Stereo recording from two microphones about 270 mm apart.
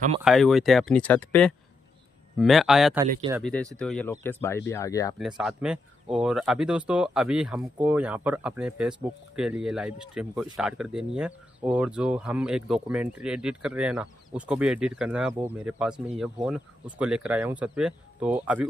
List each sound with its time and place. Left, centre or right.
0.2 s speech: centre
5.2 s speech: centre